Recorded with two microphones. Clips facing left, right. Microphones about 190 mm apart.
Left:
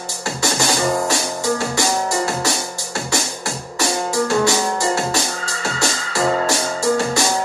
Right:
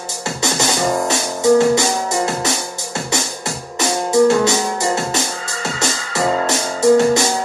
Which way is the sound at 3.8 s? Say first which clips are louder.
Right 6 dB; 20° right (ahead or behind).